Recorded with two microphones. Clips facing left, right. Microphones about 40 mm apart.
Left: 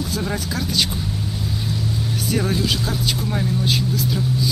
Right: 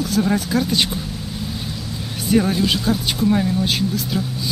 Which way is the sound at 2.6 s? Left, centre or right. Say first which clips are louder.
Right 3 dB; right.